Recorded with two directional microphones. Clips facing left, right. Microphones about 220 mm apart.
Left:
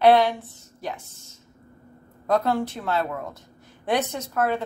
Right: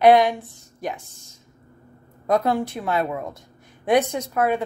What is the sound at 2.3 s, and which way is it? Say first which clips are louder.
A woman's voice: right 2 dB; 15° right (ahead or behind).